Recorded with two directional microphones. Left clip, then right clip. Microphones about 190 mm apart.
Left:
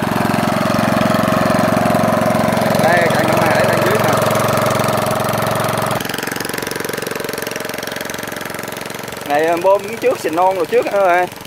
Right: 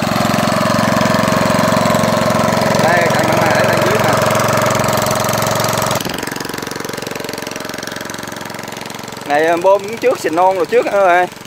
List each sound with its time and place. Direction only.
0.0 s engine: 30° right (ahead or behind); by 5.9 s 10° right (ahead or behind)
9.3 s speech: 10° right (ahead or behind)